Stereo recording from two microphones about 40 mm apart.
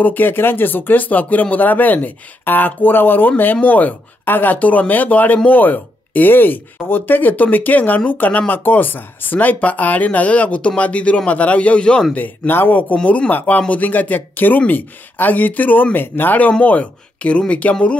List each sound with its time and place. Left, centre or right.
0.0 s a man's voice: left
12.2 s speech: left
16.6 s a man's voice: left